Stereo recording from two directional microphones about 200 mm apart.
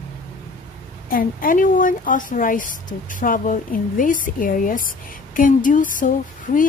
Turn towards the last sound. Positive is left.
turn(degrees=40)  # may be behind; listen again after turning